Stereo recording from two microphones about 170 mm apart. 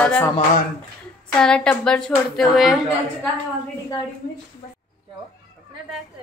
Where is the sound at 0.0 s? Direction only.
5° left (ahead or behind).